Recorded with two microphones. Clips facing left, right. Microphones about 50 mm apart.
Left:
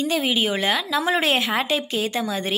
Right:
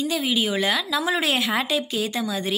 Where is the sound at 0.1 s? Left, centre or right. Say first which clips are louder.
Left 2 dB; left.